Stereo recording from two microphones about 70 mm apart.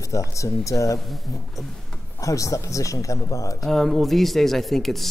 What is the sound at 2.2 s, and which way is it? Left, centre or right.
A man's voice, left.